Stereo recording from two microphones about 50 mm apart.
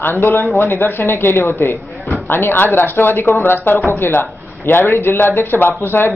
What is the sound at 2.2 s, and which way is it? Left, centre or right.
A man's voice, left.